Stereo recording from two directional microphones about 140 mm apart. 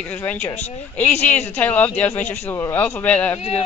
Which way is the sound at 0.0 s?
10° left (ahead or behind).